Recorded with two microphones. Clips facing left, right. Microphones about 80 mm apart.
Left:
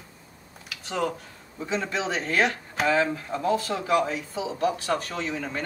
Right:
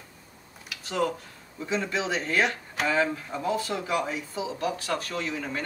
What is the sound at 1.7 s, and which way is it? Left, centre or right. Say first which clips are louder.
Speech: even; centre.